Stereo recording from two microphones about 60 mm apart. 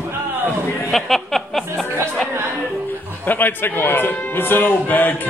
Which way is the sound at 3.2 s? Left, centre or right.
Left.